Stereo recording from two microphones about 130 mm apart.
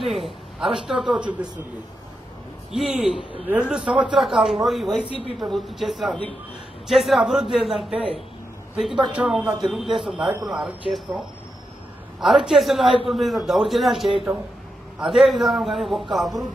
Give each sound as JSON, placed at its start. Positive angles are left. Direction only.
{"t": 0.0, "sound": "a sound", "side_deg": 0}
{"t": 1.1, "sound": "speech", "side_deg": -10}
{"t": 2.7, "sound": "a man's voice", "side_deg": -5}
{"t": 12.2, "sound": "a man's voice", "side_deg": -5}